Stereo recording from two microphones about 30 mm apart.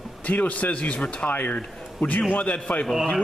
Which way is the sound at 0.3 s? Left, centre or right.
Left.